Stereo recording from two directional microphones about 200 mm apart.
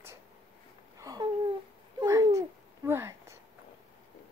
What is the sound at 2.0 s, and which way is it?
Babbling, 15° right (ahead or behind).